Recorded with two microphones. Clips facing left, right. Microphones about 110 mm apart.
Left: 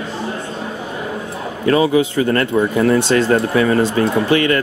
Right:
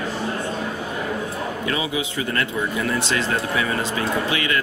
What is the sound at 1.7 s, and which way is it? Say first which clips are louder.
Speech: left 15 dB; 40° left (ahead or behind).